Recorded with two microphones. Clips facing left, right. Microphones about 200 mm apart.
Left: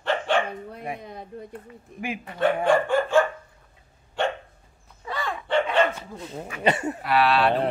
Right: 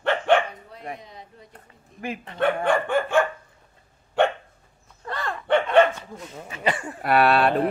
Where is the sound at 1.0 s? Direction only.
55° left (ahead or behind).